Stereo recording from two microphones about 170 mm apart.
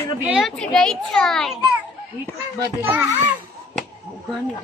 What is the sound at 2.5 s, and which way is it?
Speech, 10° right (ahead or behind).